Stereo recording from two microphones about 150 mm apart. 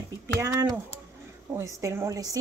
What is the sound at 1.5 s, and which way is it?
Speech, 20° right (ahead or behind).